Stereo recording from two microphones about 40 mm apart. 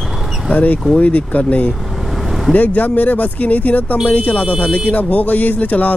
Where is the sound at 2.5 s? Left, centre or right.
Left.